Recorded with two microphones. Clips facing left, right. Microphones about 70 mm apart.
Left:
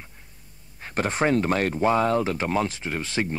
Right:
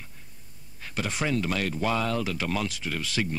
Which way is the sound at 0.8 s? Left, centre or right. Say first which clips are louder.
Left 6 dB; left.